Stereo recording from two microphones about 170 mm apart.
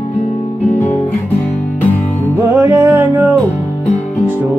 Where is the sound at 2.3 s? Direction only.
20° right (ahead or behind).